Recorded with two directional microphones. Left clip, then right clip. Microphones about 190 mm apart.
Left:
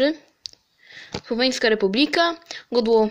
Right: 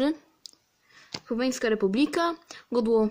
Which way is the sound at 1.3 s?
30° right (ahead or behind).